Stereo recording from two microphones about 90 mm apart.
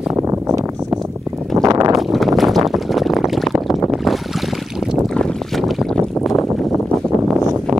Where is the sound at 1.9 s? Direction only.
Centre (ahead or behind).